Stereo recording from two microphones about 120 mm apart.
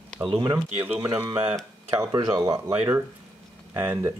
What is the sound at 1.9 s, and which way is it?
Speech, 30° right (ahead or behind).